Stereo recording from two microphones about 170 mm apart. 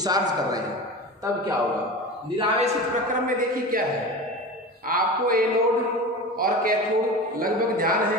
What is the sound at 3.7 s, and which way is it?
Speech, 55° right (ahead or behind).